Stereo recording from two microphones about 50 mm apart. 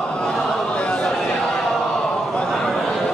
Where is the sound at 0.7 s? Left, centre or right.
Centre.